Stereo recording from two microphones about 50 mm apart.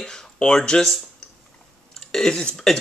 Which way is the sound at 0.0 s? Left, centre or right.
Centre.